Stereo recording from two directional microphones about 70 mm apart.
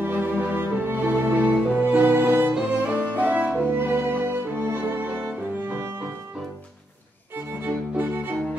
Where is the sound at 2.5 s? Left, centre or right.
Centre; by 4.2 s right.